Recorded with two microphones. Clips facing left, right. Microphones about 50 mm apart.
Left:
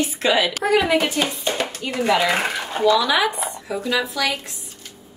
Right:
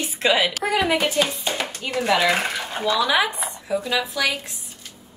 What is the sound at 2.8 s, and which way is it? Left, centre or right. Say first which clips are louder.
Speech: left 3 dB; right.